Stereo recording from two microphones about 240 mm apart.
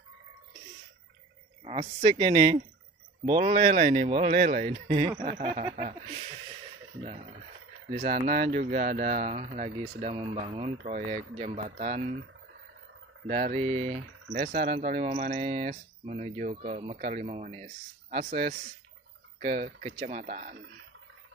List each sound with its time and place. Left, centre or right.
1.6 s speech: right
13.3 s speech: right